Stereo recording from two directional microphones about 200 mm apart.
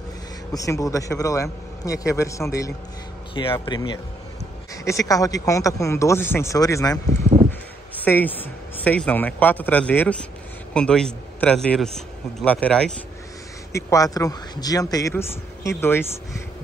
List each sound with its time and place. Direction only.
0.5 s a man's voice: 15° left (ahead or behind)
13.7 s a man's voice: 15° left (ahead or behind)